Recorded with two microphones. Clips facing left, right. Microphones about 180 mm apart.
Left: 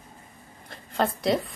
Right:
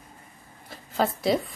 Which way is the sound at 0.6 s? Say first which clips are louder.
Even; 5° right (ahead or behind).